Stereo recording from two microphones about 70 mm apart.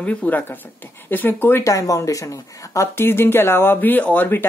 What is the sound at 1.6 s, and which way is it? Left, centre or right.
Speech, left.